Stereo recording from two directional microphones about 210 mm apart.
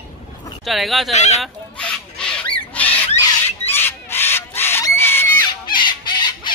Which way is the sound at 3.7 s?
10° left (ahead or behind).